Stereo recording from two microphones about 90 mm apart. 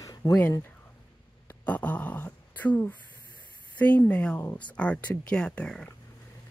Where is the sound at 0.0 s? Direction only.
40° left (ahead or behind).